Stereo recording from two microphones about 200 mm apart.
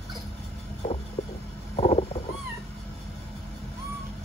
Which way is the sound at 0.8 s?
35° left (ahead or behind).